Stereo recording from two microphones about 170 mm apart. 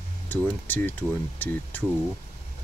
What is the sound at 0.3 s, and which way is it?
Speech, 10° left (ahead or behind).